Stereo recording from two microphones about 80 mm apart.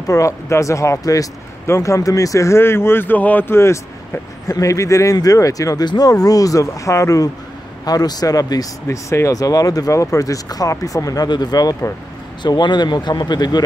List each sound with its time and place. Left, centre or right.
0.0 s speech: left
7.8 s speech: left
8.8 s speech: left
11.2 s speech: left